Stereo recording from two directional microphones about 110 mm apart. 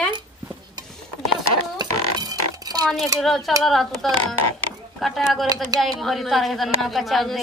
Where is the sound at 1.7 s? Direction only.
35° right (ahead or behind).